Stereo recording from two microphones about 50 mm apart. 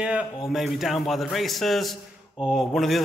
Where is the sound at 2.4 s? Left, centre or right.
Centre.